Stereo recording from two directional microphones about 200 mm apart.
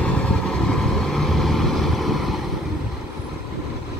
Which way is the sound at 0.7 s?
Centre (ahead or behind).